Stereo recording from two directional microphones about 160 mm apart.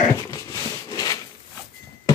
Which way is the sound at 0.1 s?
20° left (ahead or behind).